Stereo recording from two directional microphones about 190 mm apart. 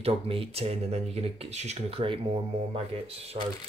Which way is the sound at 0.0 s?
30° right (ahead or behind).